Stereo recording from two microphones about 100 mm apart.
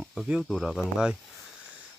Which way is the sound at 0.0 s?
Centre (ahead or behind).